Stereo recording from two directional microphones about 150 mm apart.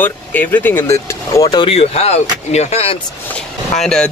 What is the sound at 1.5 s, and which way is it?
Speech, 35° left (ahead or behind).